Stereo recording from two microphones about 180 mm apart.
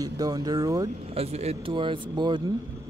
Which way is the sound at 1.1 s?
35° right (ahead or behind).